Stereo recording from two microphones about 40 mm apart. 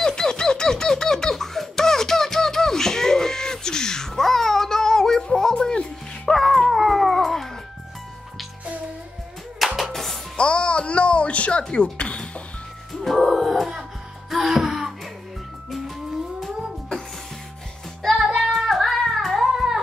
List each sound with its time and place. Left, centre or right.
0.0 s baby laughter: centre
6.3 s dog: centre
9.6 s music: centre
10.3 s music: left
13.0 s music: centre
16.3 s music: centre
18.5 s singing: centre
19.3 s music: centre